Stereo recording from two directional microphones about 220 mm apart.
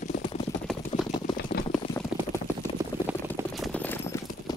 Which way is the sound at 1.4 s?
50° left (ahead or behind).